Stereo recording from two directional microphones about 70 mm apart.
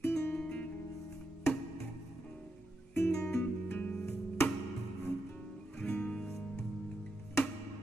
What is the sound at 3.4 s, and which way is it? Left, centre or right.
Music, left.